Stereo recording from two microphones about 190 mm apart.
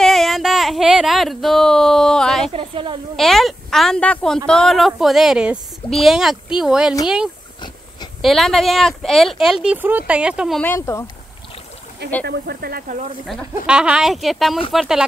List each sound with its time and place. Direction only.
0.0 s a sound: centre (ahead or behind)
2.5 s a woman's voice: 30° right (ahead or behind)
3.2 s speech: centre (ahead or behind)
8.2 s speech: centre (ahead or behind)
10.6 s speech: 10° left (ahead or behind)
12.3 s speech: 55° right (ahead or behind)
13.7 s speech: 5° right (ahead or behind)